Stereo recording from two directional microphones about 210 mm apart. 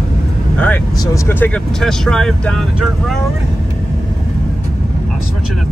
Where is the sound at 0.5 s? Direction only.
5° left (ahead or behind).